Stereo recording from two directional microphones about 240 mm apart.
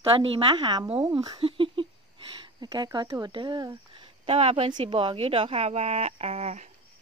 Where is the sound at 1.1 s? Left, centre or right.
Centre.